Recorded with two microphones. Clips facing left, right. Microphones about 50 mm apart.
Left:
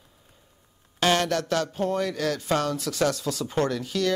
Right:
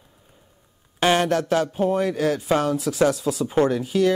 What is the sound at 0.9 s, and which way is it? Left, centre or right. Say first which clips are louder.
Speech: right 4 dB; centre.